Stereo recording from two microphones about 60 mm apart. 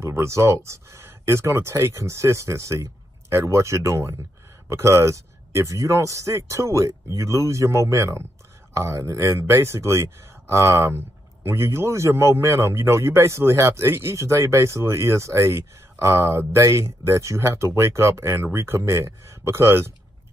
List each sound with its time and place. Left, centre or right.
0.0 s a man's voice: right